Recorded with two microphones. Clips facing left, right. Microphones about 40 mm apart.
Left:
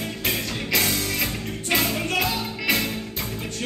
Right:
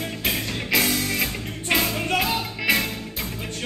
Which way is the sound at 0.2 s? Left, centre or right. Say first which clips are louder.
Even; centre.